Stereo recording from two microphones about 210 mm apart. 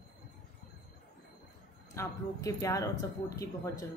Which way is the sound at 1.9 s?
15° left (ahead or behind).